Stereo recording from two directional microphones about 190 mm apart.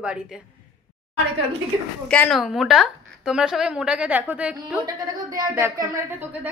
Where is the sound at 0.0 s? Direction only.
5° right (ahead or behind).